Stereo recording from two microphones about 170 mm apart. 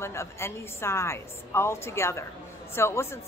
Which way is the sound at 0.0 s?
15° left (ahead or behind).